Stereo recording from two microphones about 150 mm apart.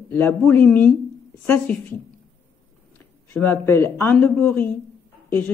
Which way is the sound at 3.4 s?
15° left (ahead or behind).